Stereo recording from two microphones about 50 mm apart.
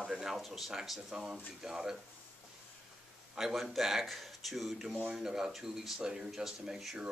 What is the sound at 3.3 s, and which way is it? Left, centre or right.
Speech, centre.